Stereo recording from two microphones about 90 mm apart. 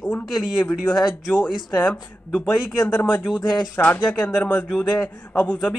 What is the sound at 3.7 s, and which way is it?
Speech, 15° left (ahead or behind).